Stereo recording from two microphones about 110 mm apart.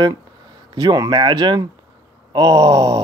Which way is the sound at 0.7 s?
35° right (ahead or behind).